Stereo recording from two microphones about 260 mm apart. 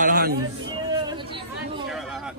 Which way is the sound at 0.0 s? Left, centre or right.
Right.